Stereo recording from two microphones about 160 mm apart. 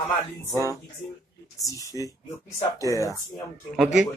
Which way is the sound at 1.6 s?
20° left (ahead or behind).